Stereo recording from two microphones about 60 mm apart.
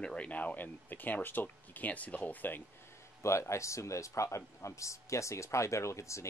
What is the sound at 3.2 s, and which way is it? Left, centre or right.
Speech, left.